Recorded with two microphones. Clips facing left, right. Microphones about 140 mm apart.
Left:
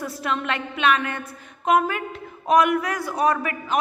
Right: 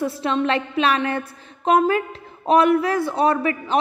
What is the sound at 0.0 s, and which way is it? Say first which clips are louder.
A man's voice: right 6 dB; 30° right (ahead or behind).